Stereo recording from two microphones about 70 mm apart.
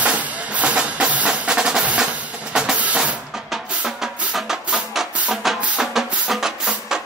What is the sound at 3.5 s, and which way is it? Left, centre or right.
Music, centre.